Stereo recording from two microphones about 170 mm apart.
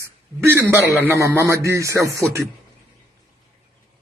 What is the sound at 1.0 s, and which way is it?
A man's voice, 15° right (ahead or behind).